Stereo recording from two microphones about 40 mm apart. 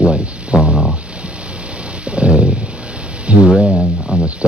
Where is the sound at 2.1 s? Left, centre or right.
Right.